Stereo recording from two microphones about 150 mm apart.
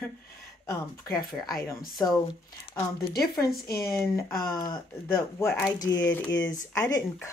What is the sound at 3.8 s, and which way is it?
Speech, 20° left (ahead or behind).